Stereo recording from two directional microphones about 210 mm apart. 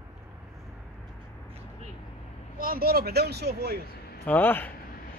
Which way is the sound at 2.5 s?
45° right (ahead or behind).